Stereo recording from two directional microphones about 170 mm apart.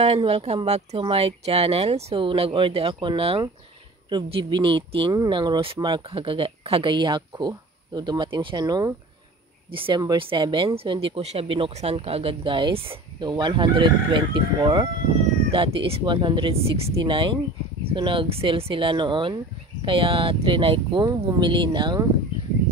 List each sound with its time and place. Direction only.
0.0 s speech: 35° right (ahead or behind)